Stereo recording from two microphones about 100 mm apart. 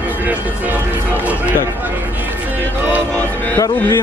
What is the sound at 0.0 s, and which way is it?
Speech, 15° right (ahead or behind).